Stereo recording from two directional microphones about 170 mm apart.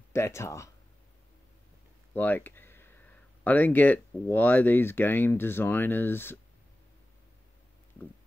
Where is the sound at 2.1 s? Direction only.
10° left (ahead or behind).